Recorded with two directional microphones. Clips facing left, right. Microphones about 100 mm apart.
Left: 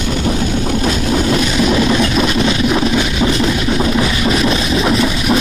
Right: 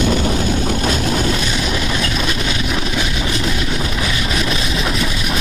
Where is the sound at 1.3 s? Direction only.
30° left (ahead or behind).